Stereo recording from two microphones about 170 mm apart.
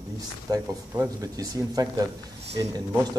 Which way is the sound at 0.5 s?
20° right (ahead or behind).